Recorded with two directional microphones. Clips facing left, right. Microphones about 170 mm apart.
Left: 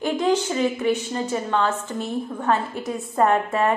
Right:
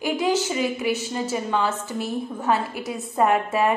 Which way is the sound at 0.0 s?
5° right (ahead or behind).